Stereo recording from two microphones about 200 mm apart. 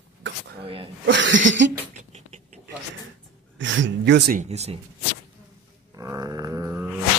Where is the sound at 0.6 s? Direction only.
30° right (ahead or behind).